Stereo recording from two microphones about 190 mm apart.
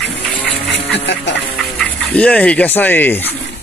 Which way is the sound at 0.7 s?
65° left (ahead or behind).